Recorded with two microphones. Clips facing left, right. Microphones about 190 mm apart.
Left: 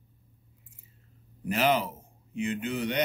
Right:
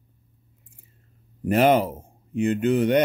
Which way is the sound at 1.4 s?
50° right (ahead or behind).